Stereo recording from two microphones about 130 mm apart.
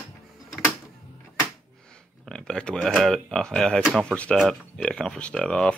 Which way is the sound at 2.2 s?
5° left (ahead or behind).